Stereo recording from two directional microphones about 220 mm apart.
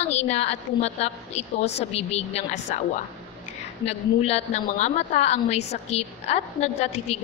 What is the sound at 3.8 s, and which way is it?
A woman's voice, 30° left (ahead or behind).